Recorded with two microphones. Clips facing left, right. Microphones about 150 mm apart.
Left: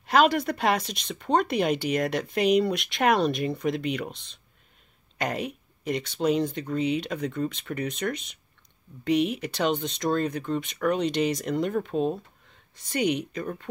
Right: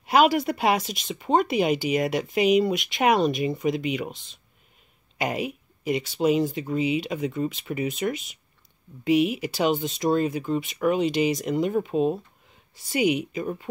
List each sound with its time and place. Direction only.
0.0 s speech: 5° right (ahead or behind)